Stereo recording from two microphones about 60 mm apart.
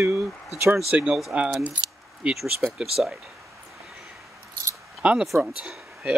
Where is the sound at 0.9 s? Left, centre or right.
Centre.